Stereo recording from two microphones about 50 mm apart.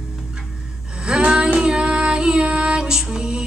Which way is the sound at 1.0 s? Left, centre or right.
Centre.